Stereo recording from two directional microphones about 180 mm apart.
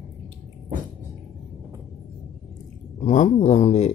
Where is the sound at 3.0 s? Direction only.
40° left (ahead or behind).